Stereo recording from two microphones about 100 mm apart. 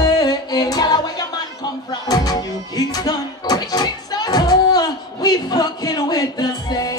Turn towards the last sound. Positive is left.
turn(degrees=40)  # may be behind; listen again after turning